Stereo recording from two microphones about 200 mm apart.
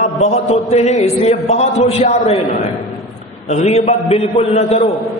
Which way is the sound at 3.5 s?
35° left (ahead or behind).